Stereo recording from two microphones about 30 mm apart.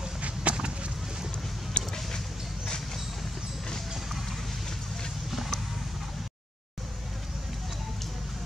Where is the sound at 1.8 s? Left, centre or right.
Left.